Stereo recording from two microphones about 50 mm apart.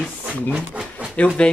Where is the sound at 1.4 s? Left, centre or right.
Left.